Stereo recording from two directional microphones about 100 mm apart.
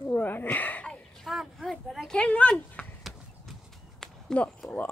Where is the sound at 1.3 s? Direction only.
Centre (ahead or behind).